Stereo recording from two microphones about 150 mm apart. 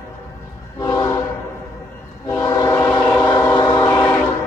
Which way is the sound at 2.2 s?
20° left (ahead or behind).